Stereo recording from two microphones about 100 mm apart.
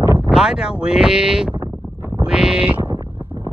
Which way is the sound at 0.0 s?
20° right (ahead or behind).